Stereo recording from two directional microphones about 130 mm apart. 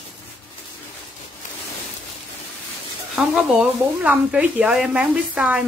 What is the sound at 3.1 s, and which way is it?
Speech, 10° right (ahead or behind).